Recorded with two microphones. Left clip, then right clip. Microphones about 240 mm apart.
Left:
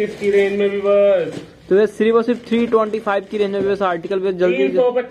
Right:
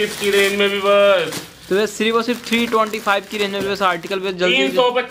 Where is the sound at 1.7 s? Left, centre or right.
Centre.